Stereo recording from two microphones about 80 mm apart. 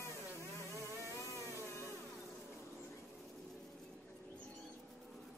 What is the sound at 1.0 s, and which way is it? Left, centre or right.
Motorboat, right.